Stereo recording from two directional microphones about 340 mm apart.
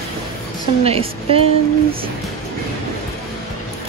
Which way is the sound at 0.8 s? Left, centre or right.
Centre.